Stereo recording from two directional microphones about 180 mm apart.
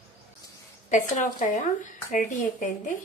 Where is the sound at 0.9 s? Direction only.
45° left (ahead or behind).